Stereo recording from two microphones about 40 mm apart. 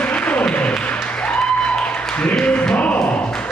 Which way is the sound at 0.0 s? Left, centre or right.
Left.